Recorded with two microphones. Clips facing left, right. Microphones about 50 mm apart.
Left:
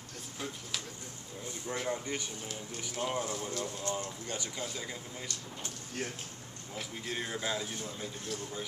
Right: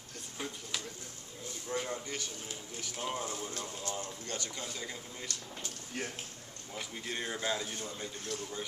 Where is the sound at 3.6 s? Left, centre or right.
Left.